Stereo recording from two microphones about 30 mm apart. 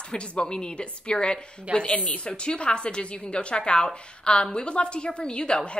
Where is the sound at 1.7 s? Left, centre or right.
Left.